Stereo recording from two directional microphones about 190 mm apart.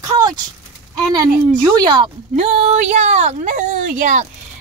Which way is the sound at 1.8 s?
25° right (ahead or behind).